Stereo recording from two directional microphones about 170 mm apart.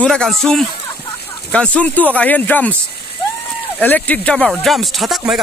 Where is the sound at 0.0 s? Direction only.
5° left (ahead or behind).